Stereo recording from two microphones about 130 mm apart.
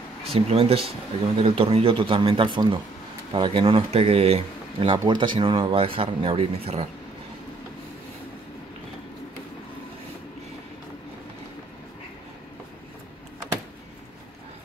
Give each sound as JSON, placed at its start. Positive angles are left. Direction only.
{"t": 0.3, "sound": "speech", "side_deg": -50}